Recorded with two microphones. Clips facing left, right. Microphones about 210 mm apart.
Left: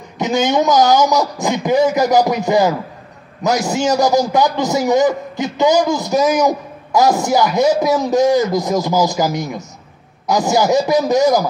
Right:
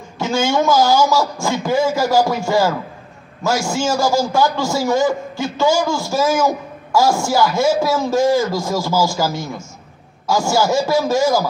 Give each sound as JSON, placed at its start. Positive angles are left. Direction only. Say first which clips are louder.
{"t": 0.2, "sound": "a man's voice", "louder": "left 2 dB", "side_deg": 20}